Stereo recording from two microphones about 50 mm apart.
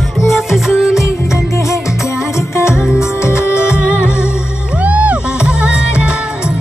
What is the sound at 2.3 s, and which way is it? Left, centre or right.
Music, left.